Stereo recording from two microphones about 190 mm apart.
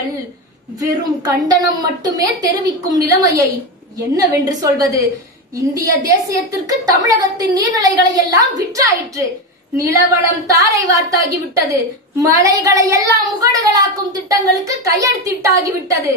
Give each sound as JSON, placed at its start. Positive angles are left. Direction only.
{"t": 0.7, "sound": "a woman's voice", "side_deg": -20}